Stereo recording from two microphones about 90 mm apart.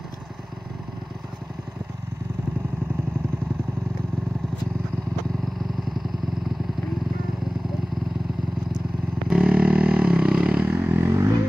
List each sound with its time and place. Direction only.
9.3 s vehicle: 15° right (ahead or behind); by 11.3 s 30° right (ahead or behind)